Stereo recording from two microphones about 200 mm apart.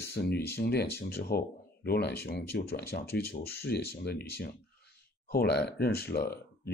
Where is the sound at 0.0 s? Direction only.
55° left (ahead or behind).